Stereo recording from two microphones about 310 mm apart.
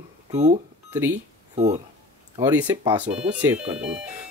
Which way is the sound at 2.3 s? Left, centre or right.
Centre.